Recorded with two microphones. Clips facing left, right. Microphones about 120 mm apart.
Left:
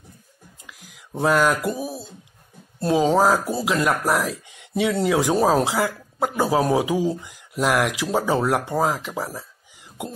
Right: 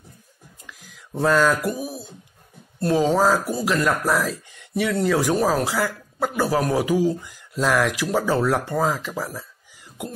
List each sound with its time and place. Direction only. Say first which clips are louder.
0.7 s a sound: right 1 dB; 15° left (ahead or behind)
1.7 s speech: left 1 dB; 25° left (ahead or behind)
2.9 s speech: left 1 dB; 15° left (ahead or behind)